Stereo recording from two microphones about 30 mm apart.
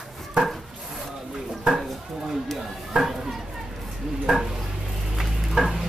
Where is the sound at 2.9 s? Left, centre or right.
Centre.